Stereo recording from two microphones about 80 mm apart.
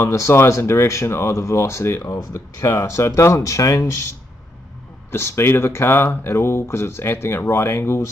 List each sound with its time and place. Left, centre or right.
0.0 s speech: left